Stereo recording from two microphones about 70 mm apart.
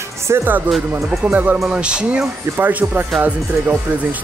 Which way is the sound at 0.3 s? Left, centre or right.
Right.